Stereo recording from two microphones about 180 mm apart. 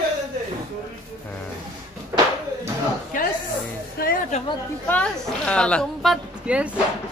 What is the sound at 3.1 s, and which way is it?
Speech, 50° left (ahead or behind).